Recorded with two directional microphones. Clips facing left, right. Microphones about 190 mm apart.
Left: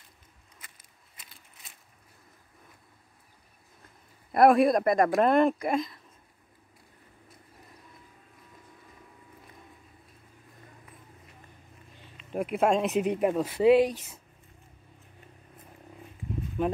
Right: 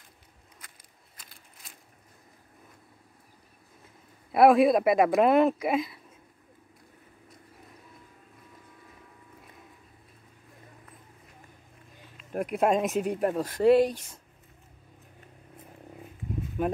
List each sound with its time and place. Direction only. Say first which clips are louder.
1.1 s a sound: right 1 dB; centre (ahead or behind)
4.3 s speech: right 1 dB; centre (ahead or behind)
12.2 s speech: even; centre (ahead or behind)
13.2 s speech: even; 10° left (ahead or behind)
16.6 s speech: even; 5° right (ahead or behind)